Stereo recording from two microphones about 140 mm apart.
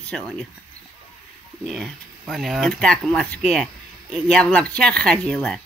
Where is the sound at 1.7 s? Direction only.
Centre (ahead or behind).